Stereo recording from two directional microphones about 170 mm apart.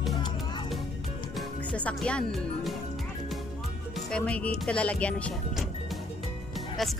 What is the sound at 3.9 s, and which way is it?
Music, 5° left (ahead or behind).